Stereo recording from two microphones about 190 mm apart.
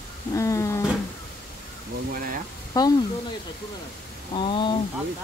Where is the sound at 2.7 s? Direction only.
20° left (ahead or behind).